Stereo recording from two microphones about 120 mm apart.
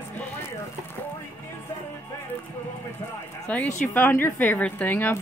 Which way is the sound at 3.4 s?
15° left (ahead or behind).